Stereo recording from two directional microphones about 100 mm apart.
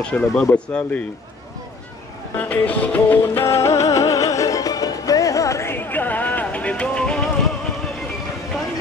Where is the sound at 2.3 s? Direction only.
15° left (ahead or behind); by 5.8 s 30° left (ahead or behind).